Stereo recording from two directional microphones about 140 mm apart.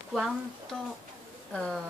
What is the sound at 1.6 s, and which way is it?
Speech, 5° left (ahead or behind).